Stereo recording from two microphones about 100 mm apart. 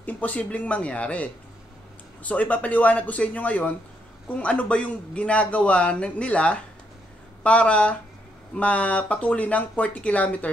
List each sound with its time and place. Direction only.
0.0 s a man's voice: 15° left (ahead or behind)